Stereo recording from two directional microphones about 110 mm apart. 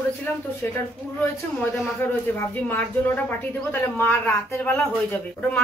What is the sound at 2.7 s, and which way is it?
Speech, 20° left (ahead or behind).